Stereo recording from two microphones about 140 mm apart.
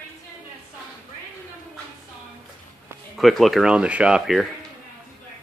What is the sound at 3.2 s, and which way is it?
Speech, centre (ahead or behind).